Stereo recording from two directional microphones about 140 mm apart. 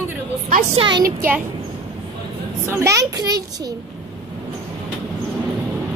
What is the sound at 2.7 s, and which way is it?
A child's voice, 20° right (ahead or behind).